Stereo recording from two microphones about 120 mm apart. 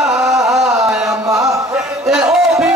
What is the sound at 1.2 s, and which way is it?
Chant, 25° right (ahead or behind).